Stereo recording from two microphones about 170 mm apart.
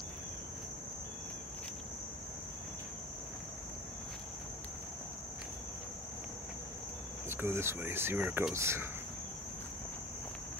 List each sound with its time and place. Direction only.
7.2 s speech: 15° right (ahead or behind)